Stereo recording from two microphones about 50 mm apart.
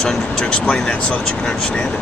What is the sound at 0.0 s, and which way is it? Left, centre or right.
Speech, centre.